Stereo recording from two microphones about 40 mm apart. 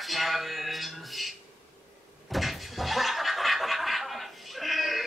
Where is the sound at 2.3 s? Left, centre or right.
Centre.